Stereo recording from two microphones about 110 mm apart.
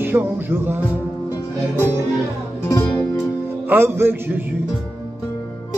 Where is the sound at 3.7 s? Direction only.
20° right (ahead or behind).